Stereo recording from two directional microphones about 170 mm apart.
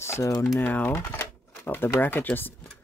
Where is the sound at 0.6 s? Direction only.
10° left (ahead or behind).